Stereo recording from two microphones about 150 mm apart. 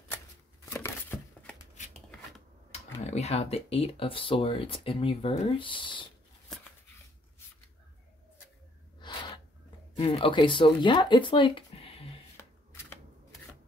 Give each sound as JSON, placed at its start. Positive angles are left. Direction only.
{"t": 0.7, "sound": "a sound", "side_deg": 15}
{"t": 2.7, "sound": "speech", "side_deg": 45}
{"t": 9.0, "sound": "sneeze", "side_deg": 30}
{"t": 9.9, "sound": "speech", "side_deg": 40}